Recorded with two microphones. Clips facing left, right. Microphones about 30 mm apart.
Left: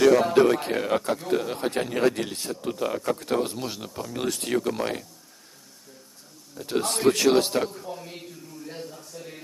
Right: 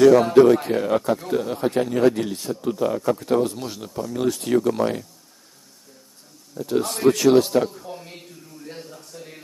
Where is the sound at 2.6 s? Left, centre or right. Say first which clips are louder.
Right 6 dB; left.